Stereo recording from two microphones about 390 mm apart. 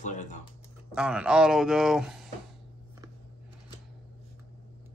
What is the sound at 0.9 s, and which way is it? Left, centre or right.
Speech, centre.